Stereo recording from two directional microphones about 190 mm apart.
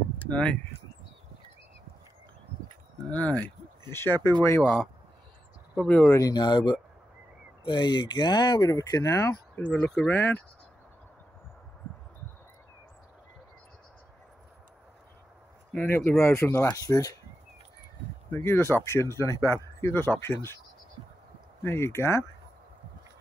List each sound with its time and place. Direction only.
0.2 s speech: 5° left (ahead or behind)
3.1 s speech: 5° left (ahead or behind)
3.4 s a sound: 15° left (ahead or behind)
4.5 s speech: 15° left (ahead or behind)
5.8 s speech: 10° left (ahead or behind)
15.7 s speech: 10° left (ahead or behind)
18.3 s speech: 10° left (ahead or behind)
21.6 s speech: 15° left (ahead or behind)